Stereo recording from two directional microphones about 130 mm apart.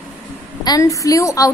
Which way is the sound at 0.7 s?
25° left (ahead or behind).